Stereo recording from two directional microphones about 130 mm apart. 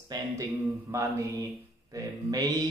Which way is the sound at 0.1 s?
30° right (ahead or behind).